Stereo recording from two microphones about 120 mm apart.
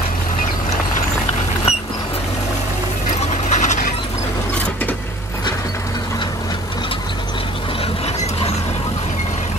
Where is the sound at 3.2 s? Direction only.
75° left (ahead or behind).